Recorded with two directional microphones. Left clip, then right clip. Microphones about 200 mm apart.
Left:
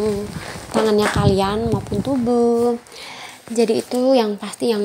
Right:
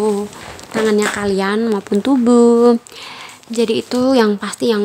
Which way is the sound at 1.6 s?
25° right (ahead or behind).